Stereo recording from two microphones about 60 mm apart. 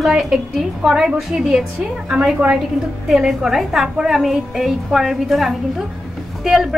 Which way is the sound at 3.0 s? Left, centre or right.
Centre.